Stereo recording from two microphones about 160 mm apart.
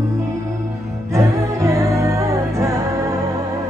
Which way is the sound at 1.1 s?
20° right (ahead or behind).